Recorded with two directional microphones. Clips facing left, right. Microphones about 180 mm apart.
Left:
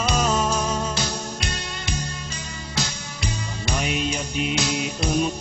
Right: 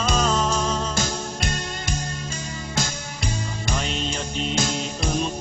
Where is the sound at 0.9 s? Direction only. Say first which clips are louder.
Right 1 dB; 45° right (ahead or behind).